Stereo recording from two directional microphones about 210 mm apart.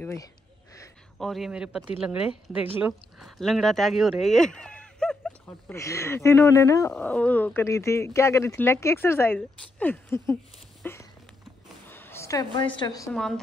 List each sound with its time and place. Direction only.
0.0 s speech: 15° left (ahead or behind)
1.1 s speech: centre (ahead or behind)
10.8 s a sound: 10° left (ahead or behind)
12.7 s speech: 20° left (ahead or behind)